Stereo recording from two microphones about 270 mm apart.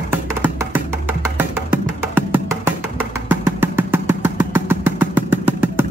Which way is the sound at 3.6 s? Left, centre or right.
Centre.